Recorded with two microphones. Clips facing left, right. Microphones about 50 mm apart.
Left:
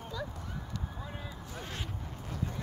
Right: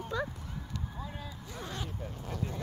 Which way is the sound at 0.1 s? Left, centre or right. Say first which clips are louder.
Right 6 dB; right.